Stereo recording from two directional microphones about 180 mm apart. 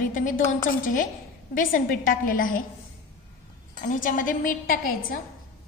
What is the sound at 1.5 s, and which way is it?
A woman's voice, 50° left (ahead or behind).